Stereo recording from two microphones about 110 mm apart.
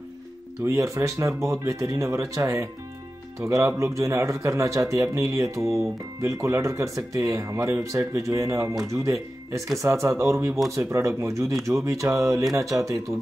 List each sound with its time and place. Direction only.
0.6 s speech: 25° right (ahead or behind)